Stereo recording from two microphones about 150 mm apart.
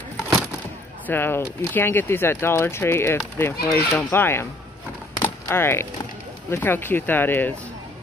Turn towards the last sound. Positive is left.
turn(degrees=15)  # may be behind; listen again after turning